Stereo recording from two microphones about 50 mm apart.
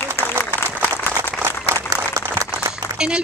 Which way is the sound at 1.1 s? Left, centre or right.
Right.